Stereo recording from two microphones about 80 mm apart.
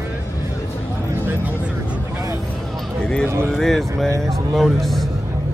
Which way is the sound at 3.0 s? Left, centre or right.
Centre.